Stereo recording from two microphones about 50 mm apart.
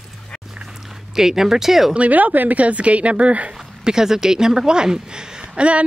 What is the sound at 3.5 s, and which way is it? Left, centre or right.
Speech, centre.